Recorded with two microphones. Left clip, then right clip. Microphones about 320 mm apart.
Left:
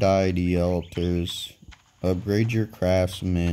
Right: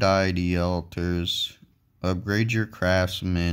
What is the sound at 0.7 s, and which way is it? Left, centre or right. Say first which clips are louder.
Speech: left 2 dB; right.